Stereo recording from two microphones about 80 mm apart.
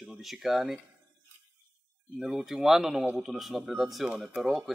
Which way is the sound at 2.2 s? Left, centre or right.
Centre.